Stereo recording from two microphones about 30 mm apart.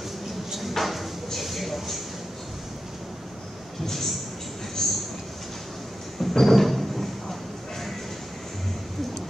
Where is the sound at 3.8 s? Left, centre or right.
Centre.